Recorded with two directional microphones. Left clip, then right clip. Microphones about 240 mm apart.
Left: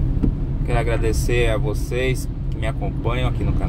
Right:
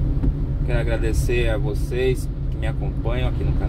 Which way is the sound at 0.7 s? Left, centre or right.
Left.